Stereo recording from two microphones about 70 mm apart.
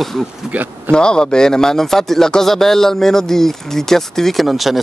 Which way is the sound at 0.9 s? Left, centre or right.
Centre.